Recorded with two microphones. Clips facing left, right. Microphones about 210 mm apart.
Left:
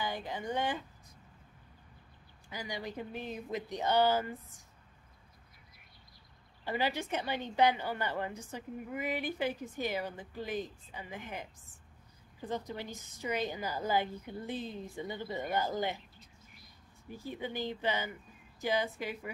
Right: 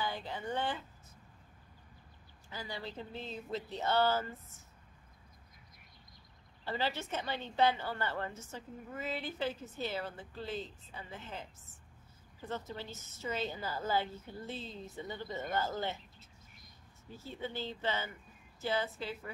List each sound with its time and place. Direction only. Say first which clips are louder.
0.0 s a woman's voice: left 1 dB; 15° left (ahead or behind)
2.5 s a woman's voice: left 3 dB; 15° left (ahead or behind)
6.6 s a woman's voice: left 3 dB; 15° left (ahead or behind)
17.1 s a woman's voice: left 3 dB; 15° left (ahead or behind)